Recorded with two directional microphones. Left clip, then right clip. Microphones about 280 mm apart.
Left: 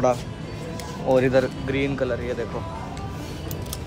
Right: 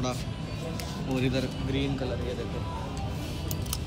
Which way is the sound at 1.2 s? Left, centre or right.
Left.